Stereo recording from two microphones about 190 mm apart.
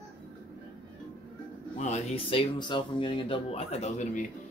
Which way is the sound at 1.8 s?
35° left (ahead or behind).